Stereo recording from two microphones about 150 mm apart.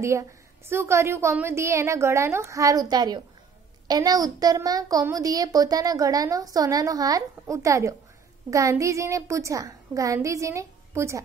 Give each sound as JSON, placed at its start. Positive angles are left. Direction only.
{"t": 0.0, "sound": "a woman's voice", "side_deg": -20}